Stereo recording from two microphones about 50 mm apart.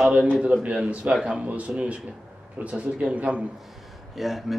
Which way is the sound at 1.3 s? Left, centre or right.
Right.